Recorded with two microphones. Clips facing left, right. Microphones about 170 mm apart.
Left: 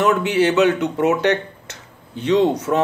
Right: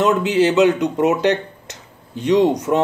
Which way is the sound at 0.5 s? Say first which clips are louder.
Right 2 dB; 15° right (ahead or behind).